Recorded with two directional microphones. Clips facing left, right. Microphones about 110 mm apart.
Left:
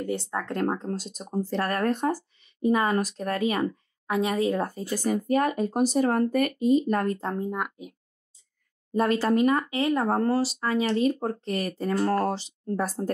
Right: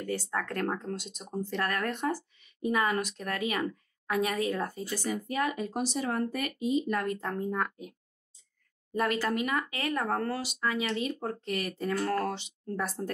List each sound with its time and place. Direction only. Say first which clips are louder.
0.0 s speech: left 3 dB; 20° left (ahead or behind)
8.9 s speech: left 6 dB; 30° left (ahead or behind)